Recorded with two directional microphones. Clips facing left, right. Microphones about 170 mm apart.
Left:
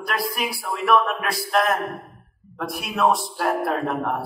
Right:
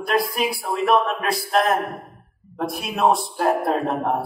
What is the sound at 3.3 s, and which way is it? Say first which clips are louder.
Speech: right 3 dB; 25° right (ahead or behind).